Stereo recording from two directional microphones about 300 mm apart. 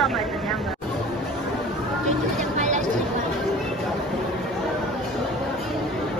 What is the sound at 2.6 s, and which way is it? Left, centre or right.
Chatter, right.